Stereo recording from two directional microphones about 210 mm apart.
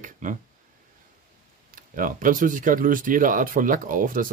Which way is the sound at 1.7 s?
40° right (ahead or behind).